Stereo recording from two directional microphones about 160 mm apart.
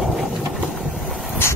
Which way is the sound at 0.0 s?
Centre (ahead or behind).